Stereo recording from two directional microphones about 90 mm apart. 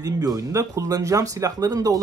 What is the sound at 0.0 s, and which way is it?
Speech, 45° right (ahead or behind).